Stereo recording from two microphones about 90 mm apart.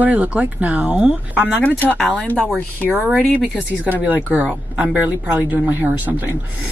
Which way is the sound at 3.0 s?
15° right (ahead or behind).